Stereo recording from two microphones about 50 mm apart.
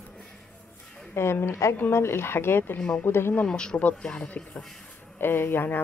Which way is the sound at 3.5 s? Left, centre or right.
Centre.